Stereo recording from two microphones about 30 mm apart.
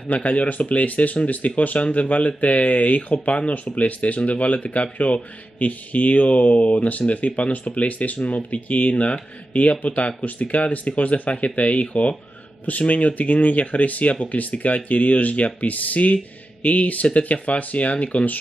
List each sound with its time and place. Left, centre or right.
0.1 s speech: left